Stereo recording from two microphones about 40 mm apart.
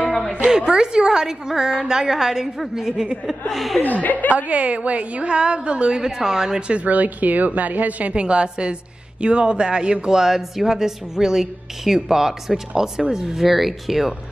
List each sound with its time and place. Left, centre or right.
0.5 s a woman's voice: centre
3.8 s a woman's voice: left
4.4 s a woman's voice: right
6.0 s a woman's voice: centre
6.7 s speech: right
8.1 s a woman's voice: right
10.1 s a woman's voice: centre